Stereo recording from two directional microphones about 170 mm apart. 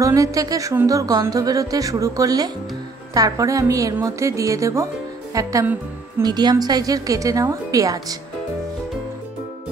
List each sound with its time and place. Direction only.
0.0 s a woman's voice: 20° right (ahead or behind)